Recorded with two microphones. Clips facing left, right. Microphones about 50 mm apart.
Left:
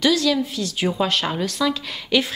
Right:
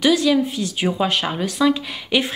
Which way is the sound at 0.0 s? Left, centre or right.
Right.